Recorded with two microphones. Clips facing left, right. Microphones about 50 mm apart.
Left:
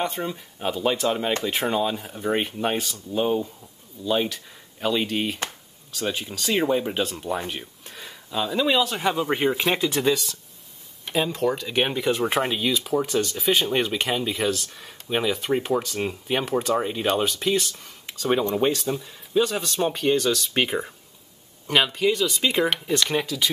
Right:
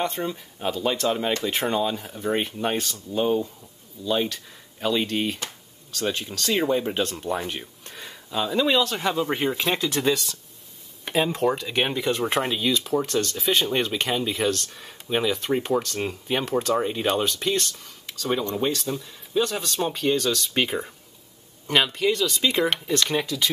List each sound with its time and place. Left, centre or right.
0.0 s speech: centre
11.3 s speech: centre
17.8 s speech: centre
18.8 s speech: centre